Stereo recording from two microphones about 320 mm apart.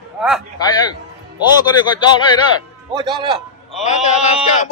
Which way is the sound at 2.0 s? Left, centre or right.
Centre.